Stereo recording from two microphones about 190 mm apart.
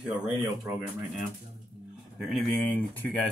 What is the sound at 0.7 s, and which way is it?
Speech, 15° right (ahead or behind).